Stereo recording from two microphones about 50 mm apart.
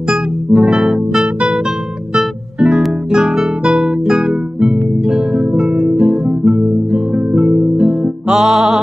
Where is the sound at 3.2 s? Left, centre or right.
Centre.